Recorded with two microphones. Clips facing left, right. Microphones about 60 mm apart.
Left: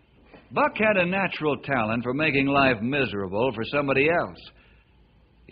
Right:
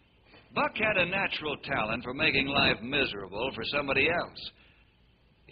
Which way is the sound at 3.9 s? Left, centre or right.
Centre.